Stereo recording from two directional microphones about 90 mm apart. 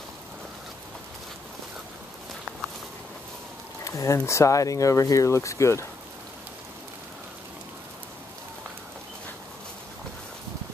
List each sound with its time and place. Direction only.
3.8 s speech: 35° left (ahead or behind)